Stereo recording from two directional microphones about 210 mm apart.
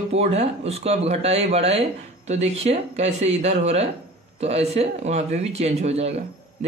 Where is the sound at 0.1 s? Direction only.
30° right (ahead or behind).